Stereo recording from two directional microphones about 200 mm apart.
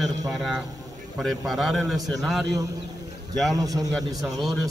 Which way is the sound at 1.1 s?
Centre (ahead or behind).